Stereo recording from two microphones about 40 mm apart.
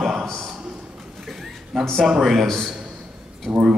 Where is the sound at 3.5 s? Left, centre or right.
Right.